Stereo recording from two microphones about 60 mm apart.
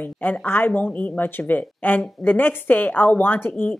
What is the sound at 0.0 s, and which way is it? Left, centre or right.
A woman's voice, left.